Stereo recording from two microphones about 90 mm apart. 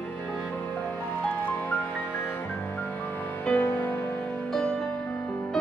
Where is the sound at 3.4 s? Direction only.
15° left (ahead or behind).